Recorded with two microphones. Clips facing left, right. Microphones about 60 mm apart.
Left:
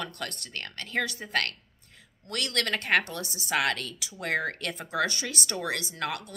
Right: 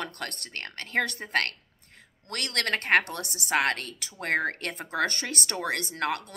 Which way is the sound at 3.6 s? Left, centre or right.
Right.